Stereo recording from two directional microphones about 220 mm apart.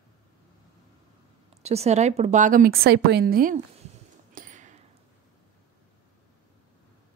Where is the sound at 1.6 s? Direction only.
30° right (ahead or behind).